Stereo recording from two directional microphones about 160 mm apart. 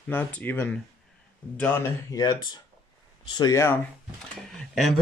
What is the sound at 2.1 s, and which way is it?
Speech, 25° left (ahead or behind).